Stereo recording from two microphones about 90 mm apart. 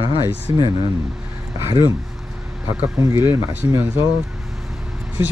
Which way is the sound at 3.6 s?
30° right (ahead or behind).